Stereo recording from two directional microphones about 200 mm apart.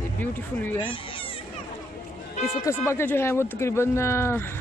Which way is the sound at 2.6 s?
15° left (ahead or behind).